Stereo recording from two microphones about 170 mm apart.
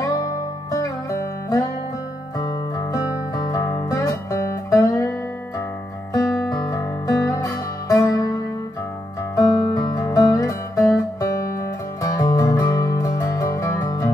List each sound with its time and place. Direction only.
0.2 s music: 20° left (ahead or behind)
3.4 s music: 20° left (ahead or behind)
6.1 s music: 25° left (ahead or behind)
9.3 s music: 25° left (ahead or behind)